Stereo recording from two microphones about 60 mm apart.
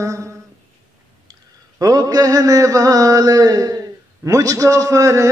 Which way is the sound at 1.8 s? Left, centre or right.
Right.